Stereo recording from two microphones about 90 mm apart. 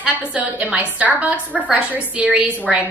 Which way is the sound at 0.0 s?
15° right (ahead or behind).